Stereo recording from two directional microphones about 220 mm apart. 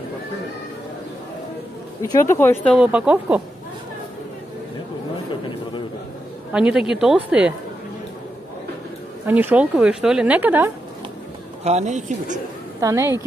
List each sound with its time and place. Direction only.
2.0 s speech: 10° left (ahead or behind); by 3.4 s 5° right (ahead or behind)
6.5 s speech: 5° right (ahead or behind)
9.2 s a woman's voice: 10° right (ahead or behind)
11.6 s a woman's voice: 30° right (ahead or behind)
12.8 s a woman's voice: 15° right (ahead or behind)